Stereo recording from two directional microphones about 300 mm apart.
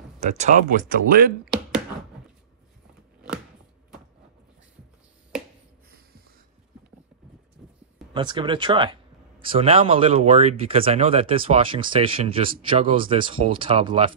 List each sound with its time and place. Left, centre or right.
0.2 s speech: right
1.4 s a sound: centre
8.1 s speech: centre